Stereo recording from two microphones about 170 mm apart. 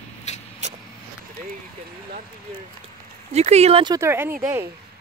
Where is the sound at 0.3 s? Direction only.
40° left (ahead or behind).